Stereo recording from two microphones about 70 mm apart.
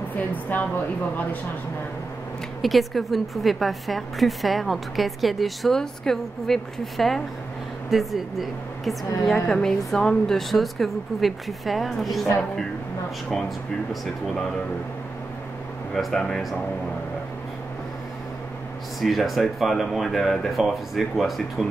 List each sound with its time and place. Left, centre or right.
0.1 s a woman's voice: left
2.6 s a woman's voice: centre
15.9 s speech: centre
18.9 s a woman's voice: centre